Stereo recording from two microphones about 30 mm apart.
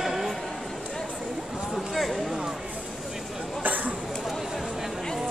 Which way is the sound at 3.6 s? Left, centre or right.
Right.